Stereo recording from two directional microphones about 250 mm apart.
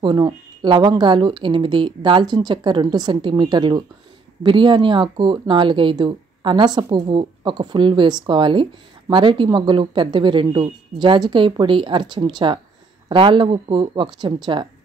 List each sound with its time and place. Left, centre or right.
0.0 s speech: centre